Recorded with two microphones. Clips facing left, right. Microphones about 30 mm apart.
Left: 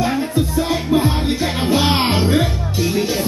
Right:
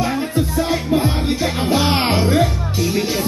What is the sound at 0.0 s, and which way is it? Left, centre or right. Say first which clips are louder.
Music: left 1 dB; centre.